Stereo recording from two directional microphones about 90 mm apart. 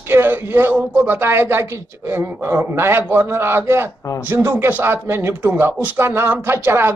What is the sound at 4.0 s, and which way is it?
Speech, 35° left (ahead or behind).